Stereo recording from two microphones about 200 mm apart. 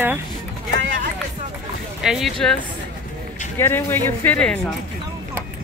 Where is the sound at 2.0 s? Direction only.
Centre (ahead or behind).